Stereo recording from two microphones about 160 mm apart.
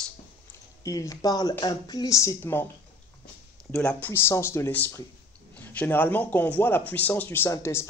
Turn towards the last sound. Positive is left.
turn(degrees=15)  # may be behind; listen again after turning